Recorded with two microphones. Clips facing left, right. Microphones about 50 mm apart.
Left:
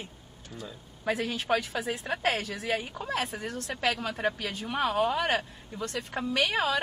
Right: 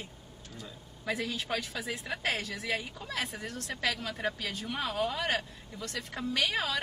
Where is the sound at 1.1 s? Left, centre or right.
Left.